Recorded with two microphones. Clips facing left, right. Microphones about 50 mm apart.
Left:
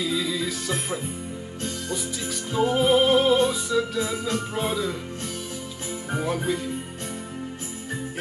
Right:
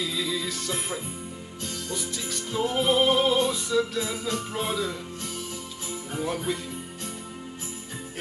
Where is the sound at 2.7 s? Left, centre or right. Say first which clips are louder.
Left 3 dB; centre.